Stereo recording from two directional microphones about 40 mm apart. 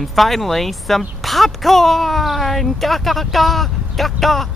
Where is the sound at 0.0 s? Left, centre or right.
Centre.